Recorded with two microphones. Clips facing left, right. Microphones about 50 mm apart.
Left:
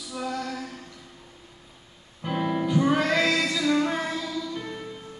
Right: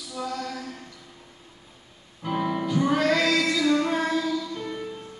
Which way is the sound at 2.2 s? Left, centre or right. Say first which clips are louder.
Even; centre.